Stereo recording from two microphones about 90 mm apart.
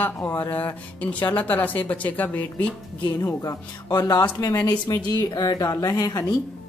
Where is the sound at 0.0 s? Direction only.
20° left (ahead or behind).